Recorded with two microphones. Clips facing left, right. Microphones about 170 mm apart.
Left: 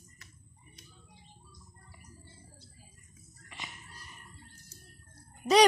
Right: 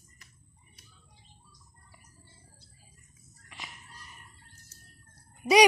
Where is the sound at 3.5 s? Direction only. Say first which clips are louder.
Left 1 dB; centre (ahead or behind).